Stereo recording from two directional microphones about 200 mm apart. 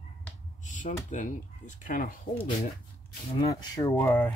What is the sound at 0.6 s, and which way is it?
Speech, 40° left (ahead or behind).